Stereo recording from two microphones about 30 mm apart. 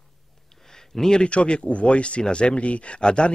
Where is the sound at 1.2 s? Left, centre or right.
Left.